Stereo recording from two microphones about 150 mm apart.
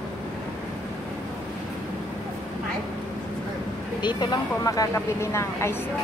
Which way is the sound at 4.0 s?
30° left (ahead or behind).